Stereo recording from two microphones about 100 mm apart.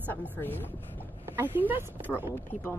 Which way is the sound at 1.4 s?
20° right (ahead or behind).